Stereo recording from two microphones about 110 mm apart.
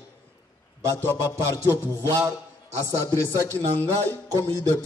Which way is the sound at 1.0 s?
20° left (ahead or behind).